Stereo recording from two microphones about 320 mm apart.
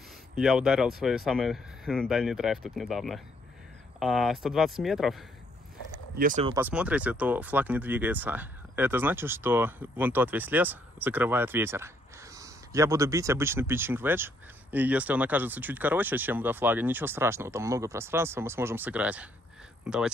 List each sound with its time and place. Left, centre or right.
0.4 s speech: centre
6.1 s speech: right
6.5 s speech: centre